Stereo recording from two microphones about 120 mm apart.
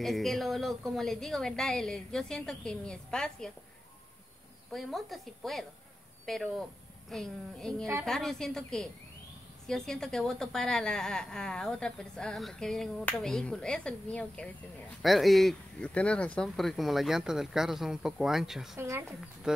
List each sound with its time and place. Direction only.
0.0 s a woman's voice: centre (ahead or behind)
4.7 s a woman's voice: centre (ahead or behind)
18.8 s speech: 20° right (ahead or behind)
19.5 s a woman's voice: 5° right (ahead or behind)